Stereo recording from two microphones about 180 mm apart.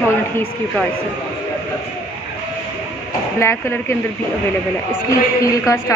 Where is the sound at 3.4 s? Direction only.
15° left (ahead or behind).